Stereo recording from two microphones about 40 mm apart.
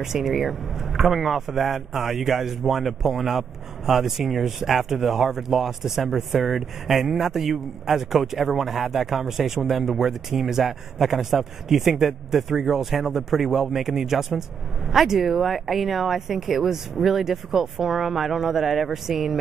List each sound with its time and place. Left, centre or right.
0.0 s speech: centre